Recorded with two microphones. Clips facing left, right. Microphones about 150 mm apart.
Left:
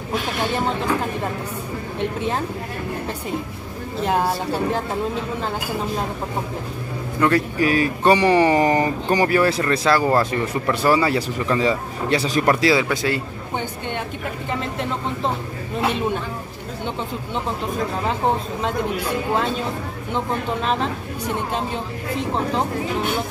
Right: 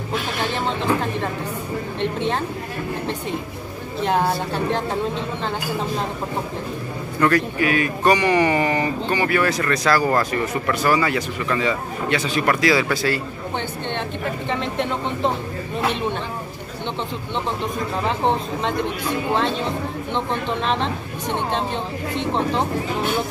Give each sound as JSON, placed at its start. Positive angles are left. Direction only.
{"t": 2.0, "sound": "a man's voice", "side_deg": 5}
{"t": 4.0, "sound": "a man's voice", "side_deg": 5}
{"t": 7.2, "sound": "a man's voice", "side_deg": 25}
{"t": 7.5, "sound": "speech", "side_deg": 35}
{"t": 12.8, "sound": "a man's voice", "side_deg": 20}
{"t": 18.0, "sound": "speech", "side_deg": 5}
{"t": 22.1, "sound": "speech", "side_deg": 5}